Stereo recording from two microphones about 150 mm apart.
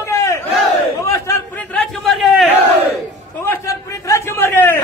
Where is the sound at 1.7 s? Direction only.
5° left (ahead or behind).